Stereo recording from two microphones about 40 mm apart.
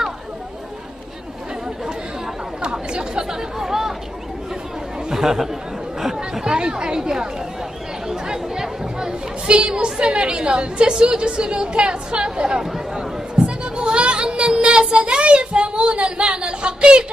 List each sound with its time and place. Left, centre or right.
2.6 s chatter: right; by 3.9 s centre
5.1 s speech: centre
9.5 s a woman's voice: right
13.7 s child singing: right